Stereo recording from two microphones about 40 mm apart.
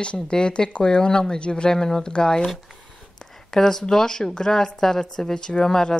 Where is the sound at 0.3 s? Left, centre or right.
Left.